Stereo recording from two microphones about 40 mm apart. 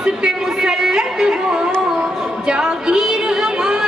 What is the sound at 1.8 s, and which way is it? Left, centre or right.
Music, right.